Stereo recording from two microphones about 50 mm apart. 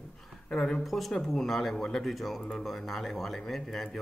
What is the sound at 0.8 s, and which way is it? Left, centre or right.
Speech, centre.